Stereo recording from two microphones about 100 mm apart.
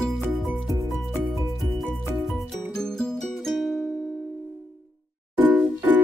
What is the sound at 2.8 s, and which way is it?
Music, 5° left (ahead or behind).